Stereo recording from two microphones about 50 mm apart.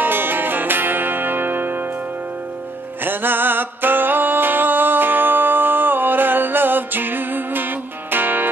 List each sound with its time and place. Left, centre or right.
0.0 s music: right
3.0 s music: right